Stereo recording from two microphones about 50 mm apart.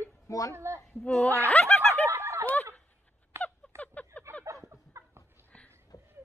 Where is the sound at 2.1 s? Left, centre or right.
Right.